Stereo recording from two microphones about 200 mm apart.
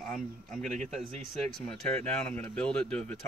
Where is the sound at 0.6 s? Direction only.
35° right (ahead or behind).